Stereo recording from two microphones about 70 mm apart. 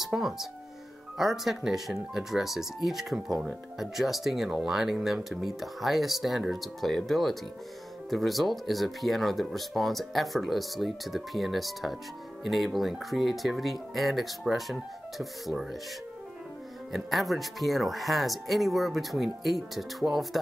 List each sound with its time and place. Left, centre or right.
0.0 s speech: centre
16.9 s speech: centre